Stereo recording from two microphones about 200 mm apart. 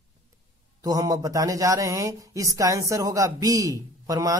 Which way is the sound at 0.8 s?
20° right (ahead or behind).